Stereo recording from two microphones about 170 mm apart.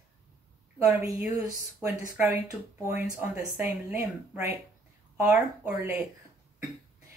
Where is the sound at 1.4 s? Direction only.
20° right (ahead or behind).